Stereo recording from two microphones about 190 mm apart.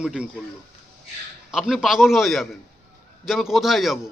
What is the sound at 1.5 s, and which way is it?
Speech, centre (ahead or behind).